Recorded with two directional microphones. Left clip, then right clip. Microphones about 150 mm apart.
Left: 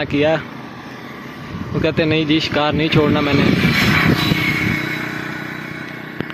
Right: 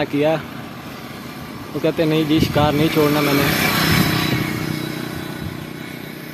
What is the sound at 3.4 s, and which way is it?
Speech, 80° right.